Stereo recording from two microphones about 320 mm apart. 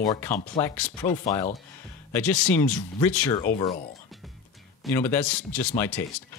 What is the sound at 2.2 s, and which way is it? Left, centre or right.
Speech, centre.